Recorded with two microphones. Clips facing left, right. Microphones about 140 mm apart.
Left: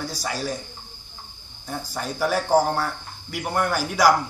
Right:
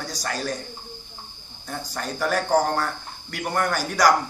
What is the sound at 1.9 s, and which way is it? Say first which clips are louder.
Cricket: left 1 dB; 10° left (ahead or behind).